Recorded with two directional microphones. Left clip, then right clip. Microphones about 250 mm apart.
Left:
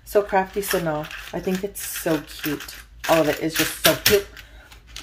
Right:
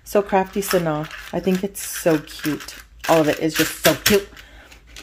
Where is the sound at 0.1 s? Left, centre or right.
Right.